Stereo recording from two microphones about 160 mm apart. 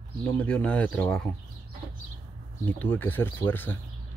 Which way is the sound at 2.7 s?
10° left (ahead or behind).